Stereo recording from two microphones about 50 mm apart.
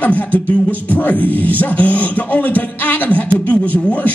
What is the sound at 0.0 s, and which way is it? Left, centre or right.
Beatboxing, left.